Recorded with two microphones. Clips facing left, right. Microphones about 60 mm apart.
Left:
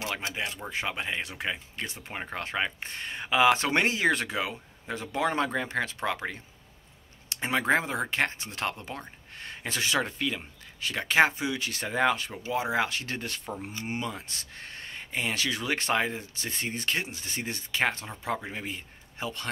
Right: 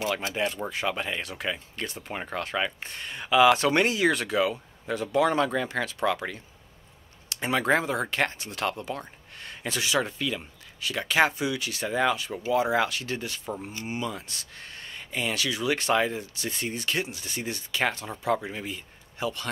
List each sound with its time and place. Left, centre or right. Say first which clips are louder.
0.3 s speech: right 5 dB; centre
0.7 s speech: right 2 dB; left
13.0 s speech: right 2 dB; left